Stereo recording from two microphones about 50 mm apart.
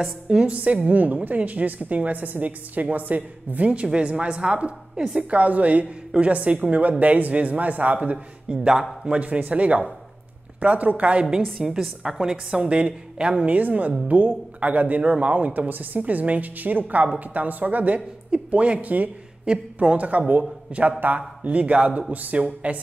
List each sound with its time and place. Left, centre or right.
0.0 s a woman's voice: centre